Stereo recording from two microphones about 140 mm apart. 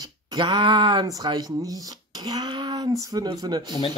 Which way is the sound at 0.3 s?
35° right (ahead or behind).